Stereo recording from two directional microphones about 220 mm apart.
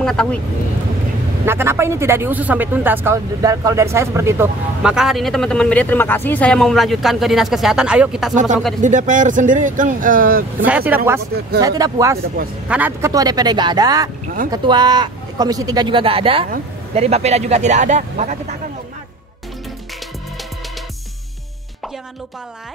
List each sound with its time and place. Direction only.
0.0 s speech: 5° left (ahead or behind)
1.4 s speech: 10° right (ahead or behind)
8.8 s speech: 35° right (ahead or behind)
10.6 s speech: 10° right (ahead or behind); by 18.4 s 35° right (ahead or behind)